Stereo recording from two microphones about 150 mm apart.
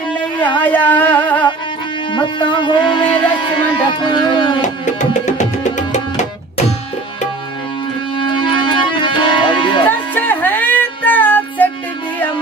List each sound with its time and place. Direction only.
0.6 s a sound: 10° left (ahead or behind)
2.1 s speech: 35° left (ahead or behind)
4.6 s music: 55° left (ahead or behind)
8.2 s music: 30° left (ahead or behind)
9.8 s music: 10° left (ahead or behind)